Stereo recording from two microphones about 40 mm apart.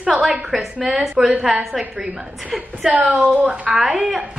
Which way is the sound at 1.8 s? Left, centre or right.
Right.